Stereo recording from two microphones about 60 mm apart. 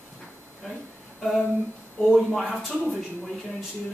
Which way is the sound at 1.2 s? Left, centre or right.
Centre.